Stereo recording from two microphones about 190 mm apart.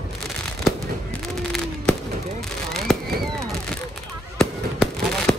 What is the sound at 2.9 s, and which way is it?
Fireworks, centre (ahead or behind).